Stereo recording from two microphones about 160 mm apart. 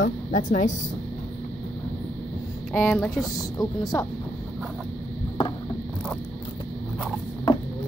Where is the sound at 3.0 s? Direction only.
Centre (ahead or behind).